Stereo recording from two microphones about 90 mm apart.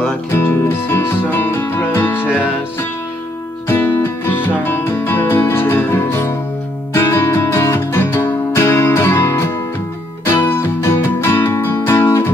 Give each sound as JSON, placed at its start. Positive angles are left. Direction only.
{"t": 0.0, "sound": "music", "side_deg": 25}
{"t": 3.6, "sound": "music", "side_deg": 25}